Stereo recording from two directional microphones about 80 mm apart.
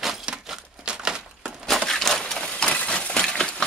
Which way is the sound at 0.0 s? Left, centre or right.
Centre.